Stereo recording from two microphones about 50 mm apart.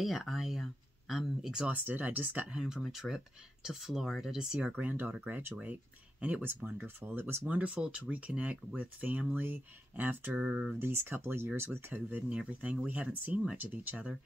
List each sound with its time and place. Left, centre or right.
0.0 s speech: centre
1.7 s speech: right
2.5 s speech: centre
4.7 s speech: right
6.8 s speech: right
7.4 s speech: right
10.4 s speech: right
10.7 s speech: right
12.3 s speech: right